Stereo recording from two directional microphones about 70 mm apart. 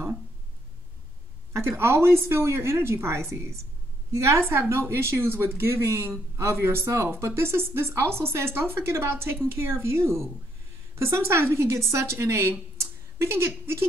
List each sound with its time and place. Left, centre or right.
1.5 s speech: right